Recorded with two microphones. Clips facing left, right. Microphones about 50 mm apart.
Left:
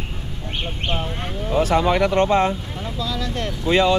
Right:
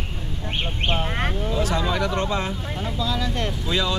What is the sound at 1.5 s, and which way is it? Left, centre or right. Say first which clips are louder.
Speech: left 9 dB; left.